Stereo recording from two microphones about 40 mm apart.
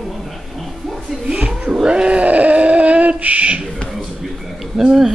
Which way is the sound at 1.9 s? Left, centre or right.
Right.